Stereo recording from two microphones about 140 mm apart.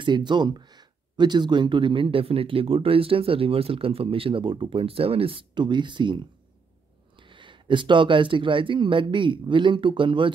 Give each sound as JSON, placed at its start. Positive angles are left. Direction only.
{"t": 0.0, "sound": "speech", "side_deg": -35}